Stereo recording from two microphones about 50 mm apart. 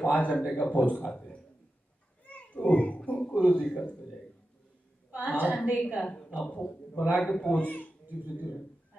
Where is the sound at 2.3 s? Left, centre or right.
Left.